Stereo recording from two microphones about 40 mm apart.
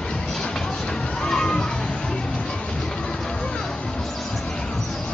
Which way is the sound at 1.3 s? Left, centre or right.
Centre.